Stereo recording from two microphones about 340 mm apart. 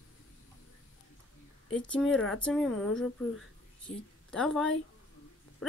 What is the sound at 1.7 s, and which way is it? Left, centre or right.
Speech, centre.